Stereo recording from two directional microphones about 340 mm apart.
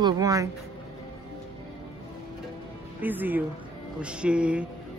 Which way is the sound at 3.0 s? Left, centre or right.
Centre.